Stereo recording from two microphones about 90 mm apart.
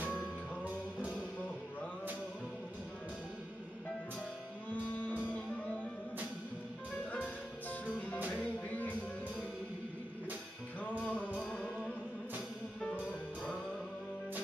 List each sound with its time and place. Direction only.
5.1 s music: 20° left (ahead or behind)
8.3 s music: 15° left (ahead or behind)
10.8 s music: 15° left (ahead or behind)